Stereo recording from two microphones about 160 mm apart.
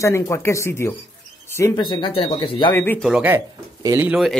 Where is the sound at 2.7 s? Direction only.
15° left (ahead or behind).